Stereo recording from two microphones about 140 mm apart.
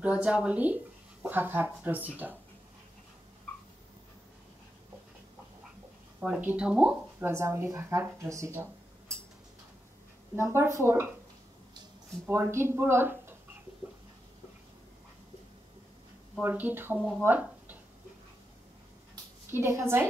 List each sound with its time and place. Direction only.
0.0 s speech: 10° right (ahead or behind)
6.2 s speech: 5° right (ahead or behind)
10.3 s speech: 15° right (ahead or behind)
12.3 s speech: 20° right (ahead or behind)
16.3 s speech: 10° right (ahead or behind)
19.5 s speech: 20° right (ahead or behind)